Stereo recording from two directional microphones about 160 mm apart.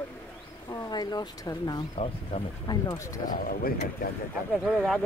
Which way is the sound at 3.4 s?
65° left (ahead or behind).